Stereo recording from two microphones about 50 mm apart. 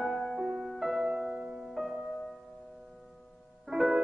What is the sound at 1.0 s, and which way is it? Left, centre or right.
Music, centre.